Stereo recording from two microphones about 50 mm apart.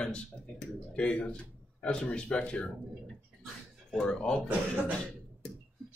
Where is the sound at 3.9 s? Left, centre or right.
Centre.